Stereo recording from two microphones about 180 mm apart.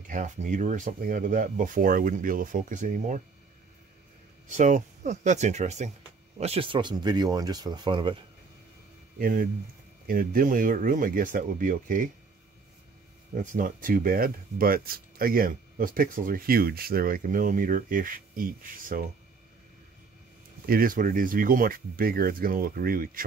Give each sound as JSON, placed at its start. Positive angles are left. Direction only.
{"t": 0.1, "sound": "speech", "side_deg": -45}
{"t": 4.5, "sound": "speech", "side_deg": -45}
{"t": 9.2, "sound": "speech", "side_deg": -50}
{"t": 13.4, "sound": "speech", "side_deg": -45}
{"t": 20.6, "sound": "speech", "side_deg": -55}